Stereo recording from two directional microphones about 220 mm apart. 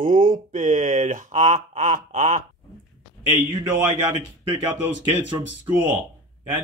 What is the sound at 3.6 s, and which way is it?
Speech, 15° right (ahead or behind).